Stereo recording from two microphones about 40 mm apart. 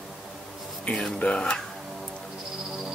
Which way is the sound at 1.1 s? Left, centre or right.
Left.